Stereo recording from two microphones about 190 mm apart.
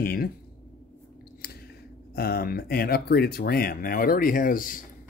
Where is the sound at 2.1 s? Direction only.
55° left (ahead or behind).